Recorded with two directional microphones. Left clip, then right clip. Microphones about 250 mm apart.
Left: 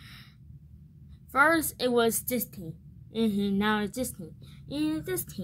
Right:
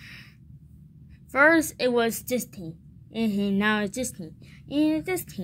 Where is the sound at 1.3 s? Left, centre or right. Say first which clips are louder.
Right 4 dB; centre.